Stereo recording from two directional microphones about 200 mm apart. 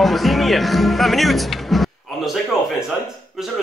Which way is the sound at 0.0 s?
Centre (ahead or behind).